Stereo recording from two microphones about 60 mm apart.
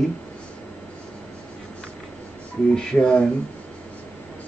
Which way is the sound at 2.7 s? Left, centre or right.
Centre.